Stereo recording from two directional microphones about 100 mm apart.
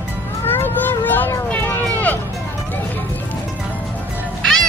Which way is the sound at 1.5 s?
20° left (ahead or behind).